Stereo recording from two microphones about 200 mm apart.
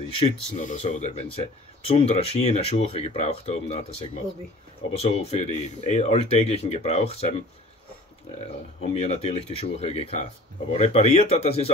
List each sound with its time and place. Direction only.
0.6 s speech: 40° left (ahead or behind)
8.8 s speech: 30° left (ahead or behind)